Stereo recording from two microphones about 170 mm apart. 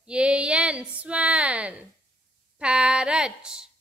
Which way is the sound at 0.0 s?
5° right (ahead or behind).